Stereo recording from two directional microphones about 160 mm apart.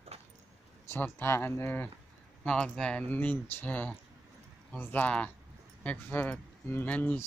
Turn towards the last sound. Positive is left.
turn(degrees=10)  # may be behind; listen again after turning